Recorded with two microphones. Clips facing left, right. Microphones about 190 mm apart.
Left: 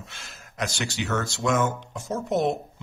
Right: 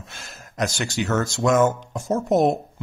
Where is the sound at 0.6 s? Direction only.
45° right (ahead or behind).